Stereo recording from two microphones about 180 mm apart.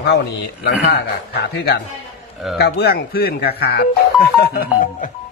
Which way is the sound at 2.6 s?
60° left (ahead or behind).